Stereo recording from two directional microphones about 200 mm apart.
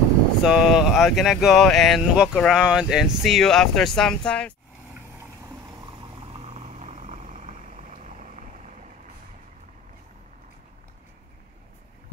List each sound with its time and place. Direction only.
0.4 s speech: centre (ahead or behind)
5.1 s vehicle: 20° right (ahead or behind); by 8.7 s 35° right (ahead or behind)